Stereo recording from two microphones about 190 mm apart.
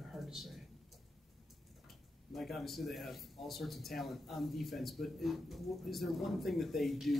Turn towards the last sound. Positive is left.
turn(degrees=0)  # may be behind; listen again after turning